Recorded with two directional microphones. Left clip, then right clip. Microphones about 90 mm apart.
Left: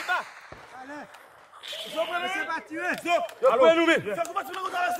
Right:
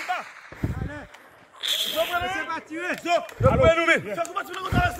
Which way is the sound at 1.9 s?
5° right (ahead or behind).